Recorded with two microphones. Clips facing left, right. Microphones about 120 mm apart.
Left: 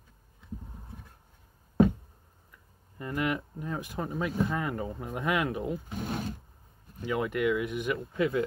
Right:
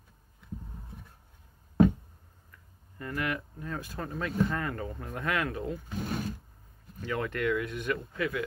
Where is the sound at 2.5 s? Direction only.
20° left (ahead or behind).